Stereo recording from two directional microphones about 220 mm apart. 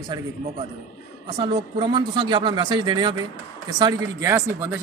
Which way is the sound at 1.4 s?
20° right (ahead or behind).